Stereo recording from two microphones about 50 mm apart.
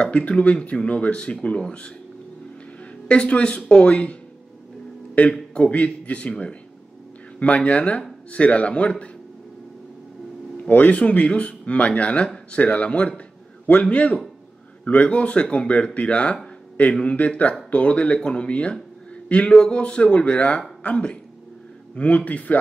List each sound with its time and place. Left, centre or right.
0.0 s speech: left
3.1 s speech: left
10.6 s a man's voice: left